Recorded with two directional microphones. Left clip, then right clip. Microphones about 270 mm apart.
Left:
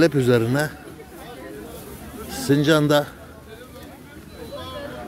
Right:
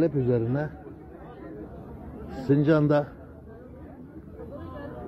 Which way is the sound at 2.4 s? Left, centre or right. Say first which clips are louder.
Left 4 dB; centre.